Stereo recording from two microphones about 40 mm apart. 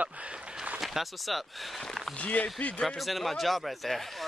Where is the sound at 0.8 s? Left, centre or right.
Centre.